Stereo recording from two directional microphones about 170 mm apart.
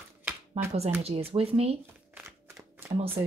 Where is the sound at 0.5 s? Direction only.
40° right (ahead or behind).